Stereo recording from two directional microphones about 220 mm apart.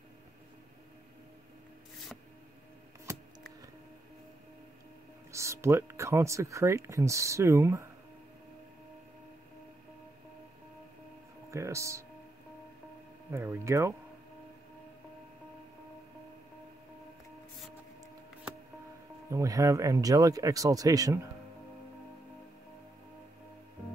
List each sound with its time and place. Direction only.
5.3 s speech: 15° right (ahead or behind)
11.5 s speech: 15° right (ahead or behind)
13.3 s speech: 10° right (ahead or behind)
19.3 s speech: 15° right (ahead or behind)